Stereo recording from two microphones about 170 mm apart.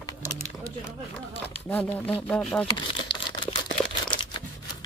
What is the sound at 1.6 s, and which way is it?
Speech, 10° left (ahead or behind).